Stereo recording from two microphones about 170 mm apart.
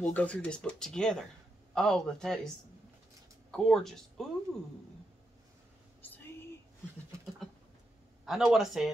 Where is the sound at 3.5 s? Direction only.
Centre (ahead or behind).